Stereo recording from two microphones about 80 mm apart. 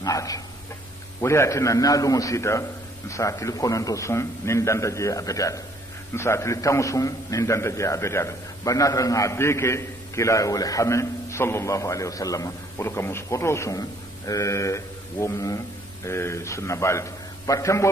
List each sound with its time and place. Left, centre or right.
0.0 s dog: left
1.2 s a man's voice: left
12.7 s a man's voice: left